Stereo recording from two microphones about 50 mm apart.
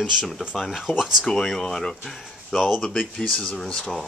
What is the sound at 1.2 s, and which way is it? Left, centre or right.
Speech, centre.